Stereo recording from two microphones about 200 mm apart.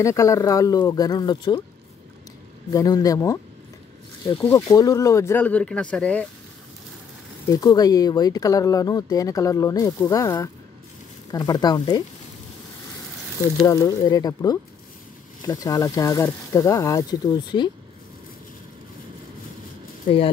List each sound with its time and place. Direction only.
0.0 s speech: 15° left (ahead or behind)
2.7 s speech: 20° left (ahead or behind)
4.5 s speech: 15° left (ahead or behind)
7.4 s speech: 20° left (ahead or behind)
13.6 s speech: 20° left (ahead or behind)